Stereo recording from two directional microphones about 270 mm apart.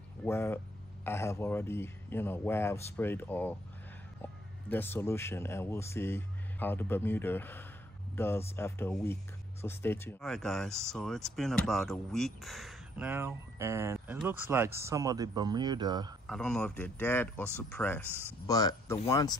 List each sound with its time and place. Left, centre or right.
0.2 s speech: centre
16.3 s speech: centre